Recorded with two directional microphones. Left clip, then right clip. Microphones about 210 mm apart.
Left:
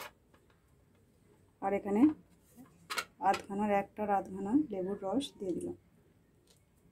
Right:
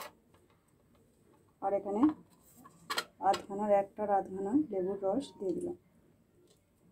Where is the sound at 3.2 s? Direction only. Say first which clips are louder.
Even; 20° left (ahead or behind).